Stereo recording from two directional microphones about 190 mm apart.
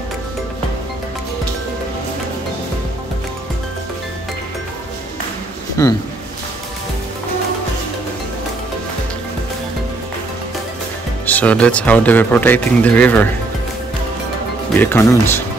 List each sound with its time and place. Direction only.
5.8 s speech: 15° left (ahead or behind)
11.2 s speech: 10° left (ahead or behind)
14.8 s speech: 10° left (ahead or behind)